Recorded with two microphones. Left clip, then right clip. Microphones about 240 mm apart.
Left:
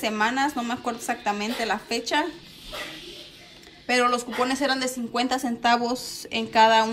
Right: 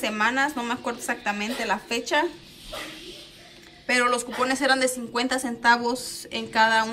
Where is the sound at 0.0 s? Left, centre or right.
Centre.